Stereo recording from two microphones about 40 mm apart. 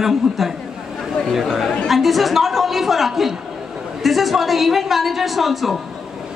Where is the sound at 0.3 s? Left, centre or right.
Centre.